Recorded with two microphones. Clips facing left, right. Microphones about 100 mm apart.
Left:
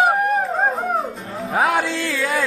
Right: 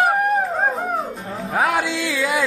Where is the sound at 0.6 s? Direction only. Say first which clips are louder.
Left 1 dB; centre (ahead or behind).